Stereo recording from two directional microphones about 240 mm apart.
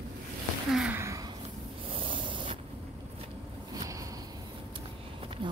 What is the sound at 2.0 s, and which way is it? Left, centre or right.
Rub, right.